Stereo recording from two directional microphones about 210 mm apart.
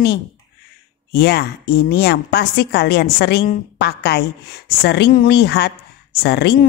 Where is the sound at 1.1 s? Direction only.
50° left (ahead or behind).